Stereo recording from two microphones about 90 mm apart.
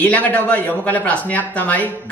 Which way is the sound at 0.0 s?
15° left (ahead or behind).